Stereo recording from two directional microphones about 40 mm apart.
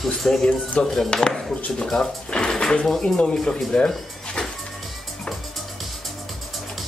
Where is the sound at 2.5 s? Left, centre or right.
Centre.